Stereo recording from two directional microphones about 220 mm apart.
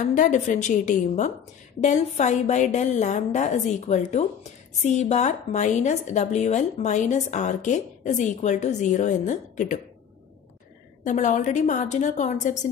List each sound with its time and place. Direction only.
0.0 s a woman's voice: 35° left (ahead or behind)
11.1 s a woman's voice: 35° left (ahead or behind)